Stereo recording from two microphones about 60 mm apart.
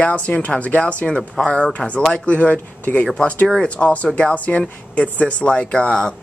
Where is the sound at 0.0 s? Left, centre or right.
Left.